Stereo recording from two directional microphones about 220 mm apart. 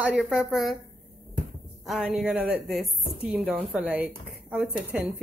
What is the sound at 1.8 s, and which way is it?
Speech, centre (ahead or behind).